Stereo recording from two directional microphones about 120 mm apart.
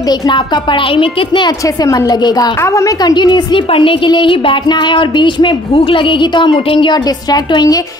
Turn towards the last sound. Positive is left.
turn(degrees=35)  # may be behind; listen again after turning